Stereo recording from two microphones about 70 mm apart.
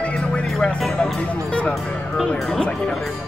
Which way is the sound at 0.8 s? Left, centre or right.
Centre.